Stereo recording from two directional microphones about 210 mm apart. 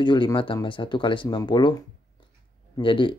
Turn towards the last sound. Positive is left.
turn(degrees=25)  # may be behind; listen again after turning